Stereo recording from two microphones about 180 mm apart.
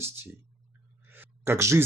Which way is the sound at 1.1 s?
10° right (ahead or behind).